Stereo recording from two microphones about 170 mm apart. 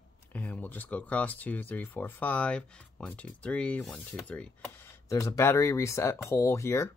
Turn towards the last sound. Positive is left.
turn(degrees=15)  # may be behind; listen again after turning